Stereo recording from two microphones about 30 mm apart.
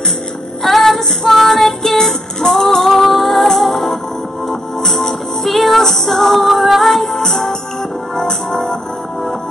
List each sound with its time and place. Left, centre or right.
0.7 s female singing: centre
1.3 s music: centre
2.5 s female singing: centre
3.0 s music: centre